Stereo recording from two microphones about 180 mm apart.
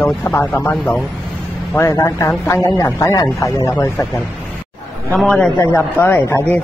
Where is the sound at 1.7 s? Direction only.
15° left (ahead or behind).